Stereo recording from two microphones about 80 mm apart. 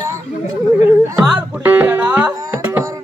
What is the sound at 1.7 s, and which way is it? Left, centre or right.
Music, right.